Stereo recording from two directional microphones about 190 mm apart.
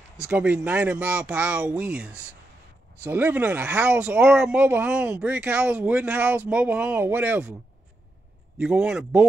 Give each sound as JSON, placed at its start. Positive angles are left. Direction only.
{"t": 0.2, "sound": "speech", "side_deg": -5}
{"t": 8.5, "sound": "speech", "side_deg": -5}